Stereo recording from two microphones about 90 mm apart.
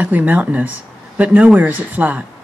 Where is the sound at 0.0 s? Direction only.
15° right (ahead or behind).